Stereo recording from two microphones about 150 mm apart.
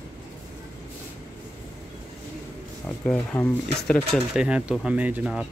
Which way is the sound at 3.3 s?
20° left (ahead or behind).